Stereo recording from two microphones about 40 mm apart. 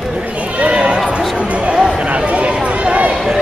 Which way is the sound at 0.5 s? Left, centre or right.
Right.